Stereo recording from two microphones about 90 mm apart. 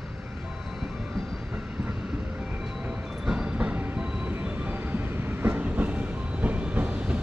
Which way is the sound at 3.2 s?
10° right (ahead or behind).